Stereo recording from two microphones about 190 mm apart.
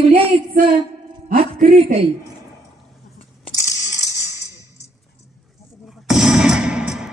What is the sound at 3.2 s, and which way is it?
Coin, 35° left (ahead or behind).